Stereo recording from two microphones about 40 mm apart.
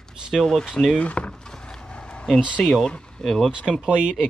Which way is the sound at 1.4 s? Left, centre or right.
Centre.